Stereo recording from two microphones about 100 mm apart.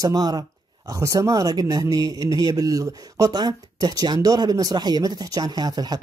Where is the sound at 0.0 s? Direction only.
40° right (ahead or behind).